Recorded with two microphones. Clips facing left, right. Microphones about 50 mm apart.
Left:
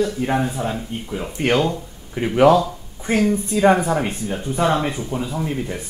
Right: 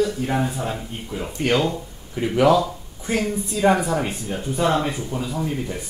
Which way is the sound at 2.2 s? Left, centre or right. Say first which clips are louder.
Left 3 dB; left.